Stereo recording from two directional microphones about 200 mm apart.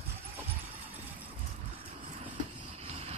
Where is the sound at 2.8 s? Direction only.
30° right (ahead or behind).